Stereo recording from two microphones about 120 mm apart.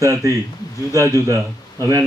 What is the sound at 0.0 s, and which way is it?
Speech, 25° right (ahead or behind).